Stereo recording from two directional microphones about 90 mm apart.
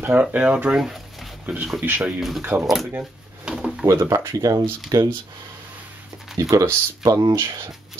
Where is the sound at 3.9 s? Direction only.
35° right (ahead or behind).